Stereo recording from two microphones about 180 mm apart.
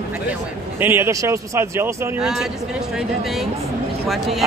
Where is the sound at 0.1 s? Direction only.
10° right (ahead or behind).